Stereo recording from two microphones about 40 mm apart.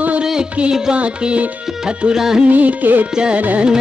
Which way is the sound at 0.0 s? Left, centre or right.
Right.